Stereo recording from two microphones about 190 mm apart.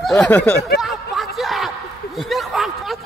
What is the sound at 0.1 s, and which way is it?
Speech, 10° left (ahead or behind).